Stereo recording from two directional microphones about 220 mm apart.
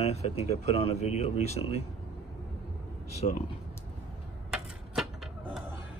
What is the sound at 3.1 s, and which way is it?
Speech, 30° left (ahead or behind).